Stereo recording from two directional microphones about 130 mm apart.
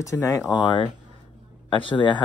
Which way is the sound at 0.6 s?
35° left (ahead or behind).